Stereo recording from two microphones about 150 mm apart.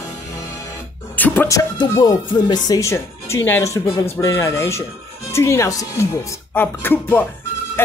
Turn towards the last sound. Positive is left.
turn(degrees=15)  # may be behind; listen again after turning